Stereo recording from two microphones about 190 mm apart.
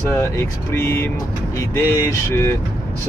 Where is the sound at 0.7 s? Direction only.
15° left (ahead or behind).